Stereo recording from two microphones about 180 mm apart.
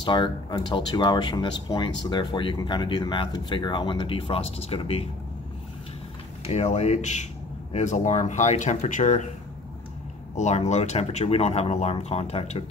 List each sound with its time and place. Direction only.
0.0 s speech: 25° left (ahead or behind)
6.4 s speech: 35° left (ahead or behind)
10.3 s speech: 40° left (ahead or behind)